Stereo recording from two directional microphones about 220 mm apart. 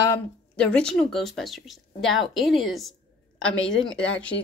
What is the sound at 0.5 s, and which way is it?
Speech, 5° left (ahead or behind).